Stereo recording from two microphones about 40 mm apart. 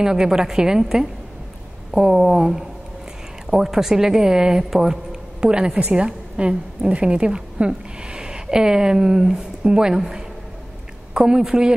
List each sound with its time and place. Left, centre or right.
0.0 s speech: centre
2.0 s speech: centre
5.4 s a woman's voice: right
11.1 s a woman's voice: right